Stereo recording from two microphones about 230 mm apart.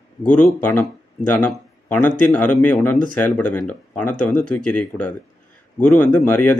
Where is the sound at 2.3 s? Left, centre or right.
Centre.